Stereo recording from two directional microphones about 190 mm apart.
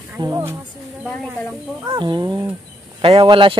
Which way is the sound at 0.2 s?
15° right (ahead or behind).